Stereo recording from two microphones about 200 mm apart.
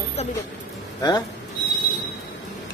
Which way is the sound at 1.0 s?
20° left (ahead or behind).